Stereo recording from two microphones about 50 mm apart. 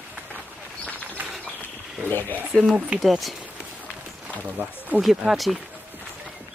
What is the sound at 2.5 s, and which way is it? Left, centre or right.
Speech, centre.